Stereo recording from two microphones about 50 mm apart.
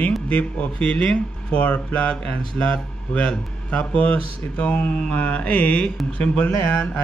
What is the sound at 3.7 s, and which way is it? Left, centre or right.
Speech, left.